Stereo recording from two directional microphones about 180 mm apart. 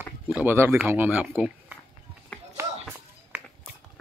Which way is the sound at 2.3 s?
5° left (ahead or behind).